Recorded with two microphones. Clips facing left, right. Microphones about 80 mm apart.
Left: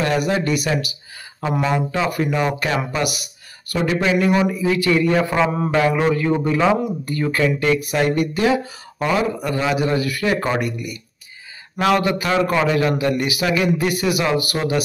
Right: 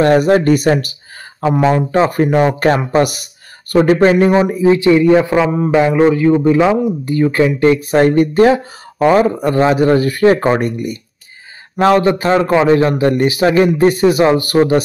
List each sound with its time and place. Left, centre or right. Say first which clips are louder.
0.0 s speech: right 9 dB; right
1.4 s a man's voice: right 7 dB; right; by 5.8 s centre
5.8 s a man's voice: right 7 dB; right
7.6 s a man's voice: right 8 dB; right